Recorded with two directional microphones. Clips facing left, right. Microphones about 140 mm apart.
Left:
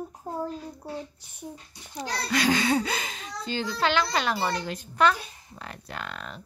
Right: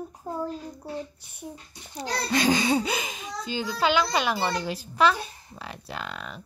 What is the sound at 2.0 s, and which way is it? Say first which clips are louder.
A child's voice: right 2 dB; 25° right (ahead or behind).